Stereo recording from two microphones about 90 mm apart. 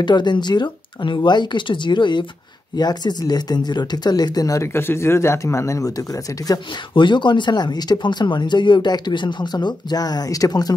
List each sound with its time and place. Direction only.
0.0 s speech: 55° left (ahead or behind); by 4.6 s 40° left (ahead or behind)
4.7 s speech: 25° left (ahead or behind)
7.0 s speech: 60° left (ahead or behind); by 10.7 s 45° left (ahead or behind)